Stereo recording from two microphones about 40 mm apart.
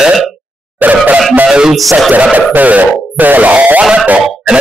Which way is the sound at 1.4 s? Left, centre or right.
Centre.